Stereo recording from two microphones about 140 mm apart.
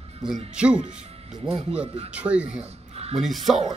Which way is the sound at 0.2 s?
5° right (ahead or behind).